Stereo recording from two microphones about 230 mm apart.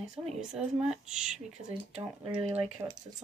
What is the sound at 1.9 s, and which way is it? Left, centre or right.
Speech, right.